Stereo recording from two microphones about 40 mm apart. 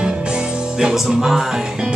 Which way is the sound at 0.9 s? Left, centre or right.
Centre.